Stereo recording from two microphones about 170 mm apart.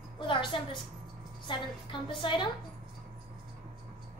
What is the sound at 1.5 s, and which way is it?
A child's voice, 30° left (ahead or behind).